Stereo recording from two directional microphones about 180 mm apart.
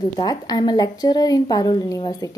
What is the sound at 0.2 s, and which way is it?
A woman's voice, 20° left (ahead or behind).